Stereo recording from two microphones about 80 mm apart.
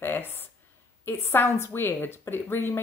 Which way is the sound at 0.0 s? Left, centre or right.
Left.